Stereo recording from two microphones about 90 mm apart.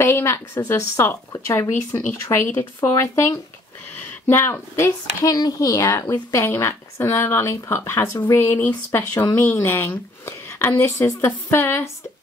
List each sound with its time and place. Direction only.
0.0 s a woman's voice: 25° left (ahead or behind)
5.2 s a woman's voice: 45° left (ahead or behind); by 11.9 s 25° left (ahead or behind)